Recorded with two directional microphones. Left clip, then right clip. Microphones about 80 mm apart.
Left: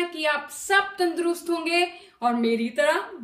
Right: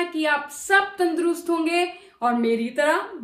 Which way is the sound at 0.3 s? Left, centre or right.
Right.